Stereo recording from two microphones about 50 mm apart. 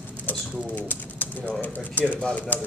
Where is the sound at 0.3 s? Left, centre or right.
Left.